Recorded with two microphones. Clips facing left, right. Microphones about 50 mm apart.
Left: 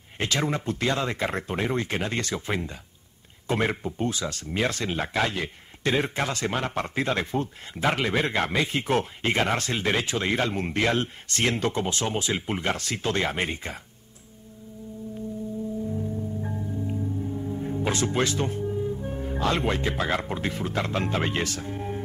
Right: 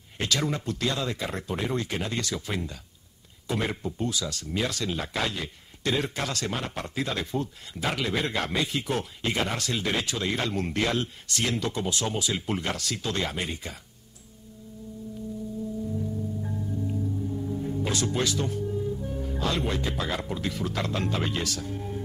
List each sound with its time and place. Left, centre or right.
0.2 s speech: left
16.0 s music: left
19.0 s speech: left